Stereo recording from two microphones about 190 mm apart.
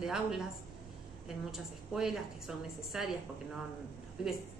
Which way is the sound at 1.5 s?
Centre (ahead or behind).